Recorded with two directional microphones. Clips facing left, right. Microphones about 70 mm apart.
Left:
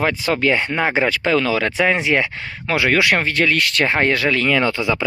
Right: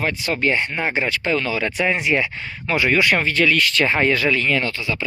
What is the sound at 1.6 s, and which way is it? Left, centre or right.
Speech, left.